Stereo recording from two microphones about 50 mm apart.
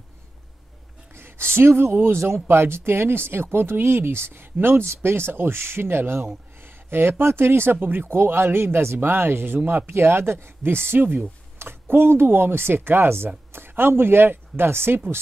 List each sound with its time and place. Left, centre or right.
1.5 s speech: right
9.9 s speech: right
11.5 s speech: right